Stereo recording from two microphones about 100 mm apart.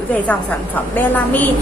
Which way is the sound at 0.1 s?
15° left (ahead or behind).